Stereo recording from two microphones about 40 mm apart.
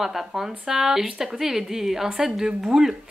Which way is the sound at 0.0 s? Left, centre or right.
Centre.